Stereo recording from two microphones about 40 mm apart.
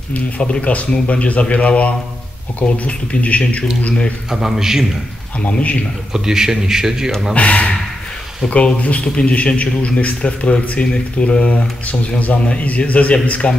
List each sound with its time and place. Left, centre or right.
0.4 s a man's voice: left
4.3 s a man's voice: centre
5.4 s a man's voice: left
6.1 s a man's voice: centre
7.3 s a man's voice: left
9.0 s a man's voice: left